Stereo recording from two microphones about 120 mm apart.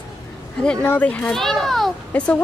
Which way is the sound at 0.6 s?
10° left (ahead or behind).